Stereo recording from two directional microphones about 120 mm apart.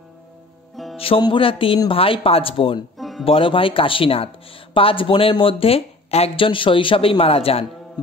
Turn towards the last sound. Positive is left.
turn(degrees=55)  # may be behind; listen again after turning